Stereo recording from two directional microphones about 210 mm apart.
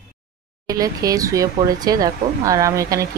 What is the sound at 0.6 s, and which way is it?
Speech, 15° right (ahead or behind).